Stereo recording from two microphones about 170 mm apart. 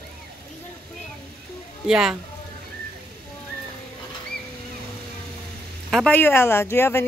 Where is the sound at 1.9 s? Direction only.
5° right (ahead or behind).